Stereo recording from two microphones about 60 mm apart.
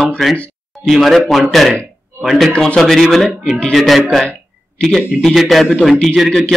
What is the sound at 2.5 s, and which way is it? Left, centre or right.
A man's voice, centre.